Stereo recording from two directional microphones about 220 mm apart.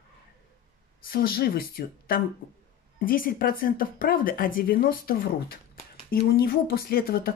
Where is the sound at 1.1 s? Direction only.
45° left (ahead or behind).